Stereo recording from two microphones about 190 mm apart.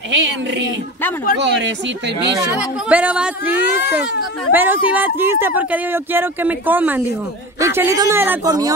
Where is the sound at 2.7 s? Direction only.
5° right (ahead or behind).